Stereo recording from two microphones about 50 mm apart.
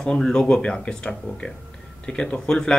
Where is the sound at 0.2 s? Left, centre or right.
Centre.